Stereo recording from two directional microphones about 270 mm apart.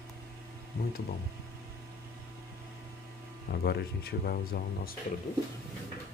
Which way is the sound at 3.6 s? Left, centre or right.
Left.